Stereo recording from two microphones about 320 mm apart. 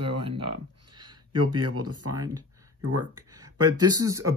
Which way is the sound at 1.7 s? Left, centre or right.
Right.